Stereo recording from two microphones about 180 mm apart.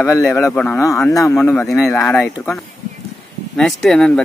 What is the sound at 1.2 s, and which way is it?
Speech, 15° left (ahead or behind).